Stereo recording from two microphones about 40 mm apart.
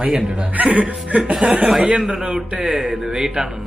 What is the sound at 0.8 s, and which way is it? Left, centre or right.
A man's voice, right.